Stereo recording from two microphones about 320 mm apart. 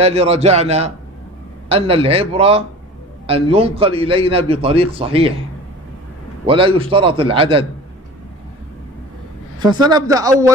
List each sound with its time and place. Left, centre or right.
0.0 s a man's voice: centre
6.4 s a man's voice: centre
9.6 s a man's voice: centre